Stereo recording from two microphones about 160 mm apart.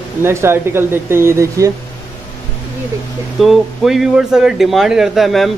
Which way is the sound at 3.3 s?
Centre (ahead or behind).